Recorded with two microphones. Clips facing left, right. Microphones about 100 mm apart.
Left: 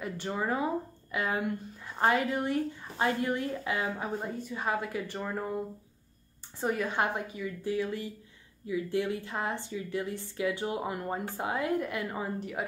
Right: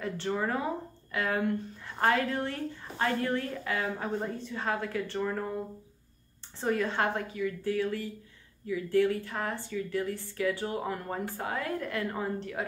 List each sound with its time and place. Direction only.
0.0 s speech: 10° left (ahead or behind)
6.6 s speech: 10° left (ahead or behind)